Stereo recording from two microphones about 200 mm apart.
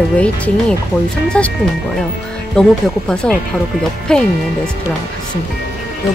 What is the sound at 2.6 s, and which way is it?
Speech, 5° left (ahead or behind).